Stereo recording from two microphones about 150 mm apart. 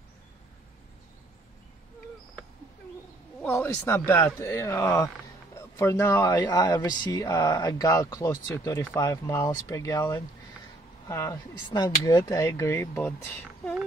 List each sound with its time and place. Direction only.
3.4 s speech: 15° left (ahead or behind)
11.3 s speech: 30° left (ahead or behind)